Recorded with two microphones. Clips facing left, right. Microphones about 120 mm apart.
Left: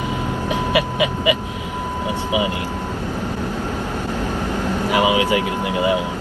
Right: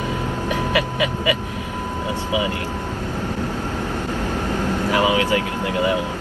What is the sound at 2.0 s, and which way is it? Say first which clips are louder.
Speech: left 2 dB; 15° left (ahead or behind).